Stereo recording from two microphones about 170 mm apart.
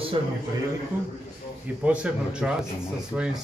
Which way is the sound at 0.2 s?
30° right (ahead or behind).